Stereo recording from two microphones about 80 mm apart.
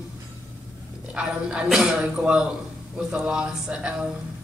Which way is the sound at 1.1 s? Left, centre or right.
Centre.